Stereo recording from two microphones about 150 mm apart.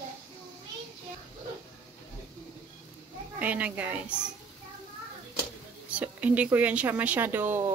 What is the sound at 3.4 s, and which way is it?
Speech, 10° right (ahead or behind).